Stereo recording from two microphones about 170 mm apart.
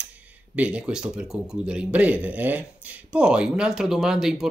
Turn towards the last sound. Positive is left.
turn(degrees=-5)  # may be behind; listen again after turning